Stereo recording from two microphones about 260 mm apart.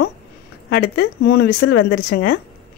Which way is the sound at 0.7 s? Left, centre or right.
Left.